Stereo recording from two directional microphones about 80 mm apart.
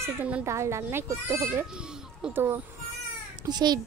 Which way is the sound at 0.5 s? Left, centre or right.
Right.